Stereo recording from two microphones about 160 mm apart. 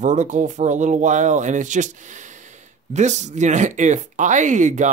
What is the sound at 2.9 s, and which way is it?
Speech, 45° right (ahead or behind).